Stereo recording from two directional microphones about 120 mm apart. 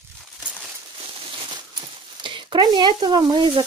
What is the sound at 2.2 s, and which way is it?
Speech, 40° right (ahead or behind).